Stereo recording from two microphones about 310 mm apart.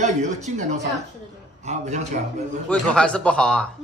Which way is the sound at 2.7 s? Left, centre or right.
Centre.